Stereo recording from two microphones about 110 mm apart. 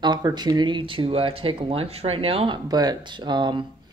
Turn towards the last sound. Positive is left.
turn(degrees=-45)  # may be behind; listen again after turning